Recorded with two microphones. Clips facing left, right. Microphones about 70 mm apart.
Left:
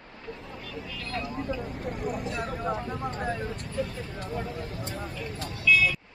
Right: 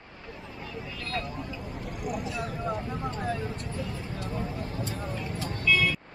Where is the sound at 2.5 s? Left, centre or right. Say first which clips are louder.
Left 1 dB; centre.